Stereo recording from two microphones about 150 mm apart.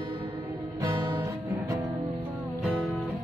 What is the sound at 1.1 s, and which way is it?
Music, 20° right (ahead or behind).